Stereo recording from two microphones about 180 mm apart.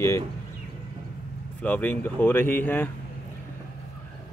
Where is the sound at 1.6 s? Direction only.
10° left (ahead or behind).